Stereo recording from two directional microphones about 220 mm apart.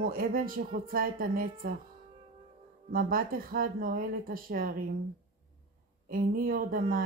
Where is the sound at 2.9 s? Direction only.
40° right (ahead or behind).